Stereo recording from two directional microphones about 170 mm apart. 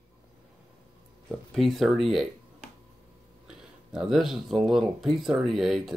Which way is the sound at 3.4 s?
5° right (ahead or behind).